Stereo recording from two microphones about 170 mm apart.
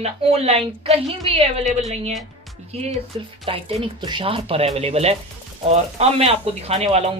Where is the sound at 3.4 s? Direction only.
30° right (ahead or behind).